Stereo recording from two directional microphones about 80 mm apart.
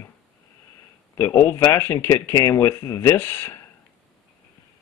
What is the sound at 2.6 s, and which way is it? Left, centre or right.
Speech, left.